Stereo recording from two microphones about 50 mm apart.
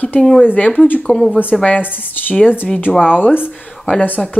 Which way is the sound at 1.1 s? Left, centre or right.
Left.